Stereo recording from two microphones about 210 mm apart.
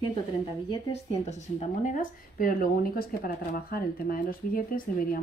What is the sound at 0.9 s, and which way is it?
Speech, 30° left (ahead or behind).